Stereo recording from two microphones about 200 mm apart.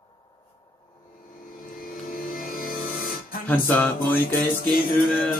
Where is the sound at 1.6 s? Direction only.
45° left (ahead or behind).